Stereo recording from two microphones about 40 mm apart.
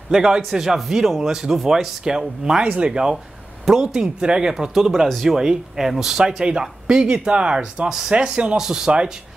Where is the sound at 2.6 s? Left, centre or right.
Right.